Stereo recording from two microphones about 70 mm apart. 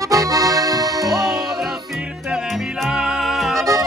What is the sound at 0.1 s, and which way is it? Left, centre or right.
Accordion, right.